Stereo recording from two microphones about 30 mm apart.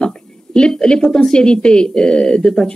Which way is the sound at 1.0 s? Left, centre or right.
Centre.